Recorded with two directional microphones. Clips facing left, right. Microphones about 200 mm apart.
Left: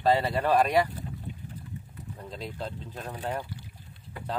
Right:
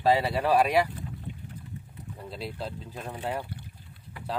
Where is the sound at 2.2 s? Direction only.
5° right (ahead or behind).